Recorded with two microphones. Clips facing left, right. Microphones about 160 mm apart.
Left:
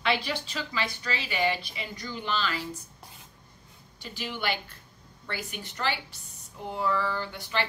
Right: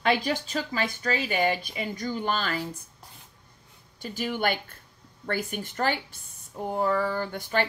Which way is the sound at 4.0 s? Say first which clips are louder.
Right 6 dB; 45° right (ahead or behind).